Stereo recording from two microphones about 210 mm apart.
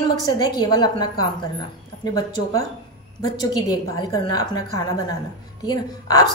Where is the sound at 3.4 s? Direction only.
15° left (ahead or behind).